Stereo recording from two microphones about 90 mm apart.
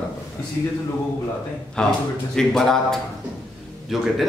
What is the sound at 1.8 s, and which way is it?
Speech, 10° left (ahead or behind).